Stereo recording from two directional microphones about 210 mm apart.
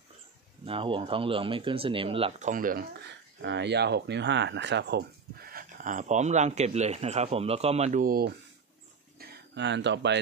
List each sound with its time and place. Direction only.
0.7 s speech: 25° right (ahead or behind); by 2.9 s 40° right (ahead or behind)
3.4 s speech: 55° right (ahead or behind)